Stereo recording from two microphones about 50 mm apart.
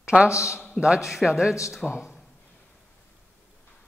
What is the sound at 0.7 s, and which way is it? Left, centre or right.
A man's voice, centre.